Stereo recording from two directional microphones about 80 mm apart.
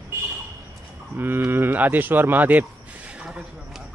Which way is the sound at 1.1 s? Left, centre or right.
Right.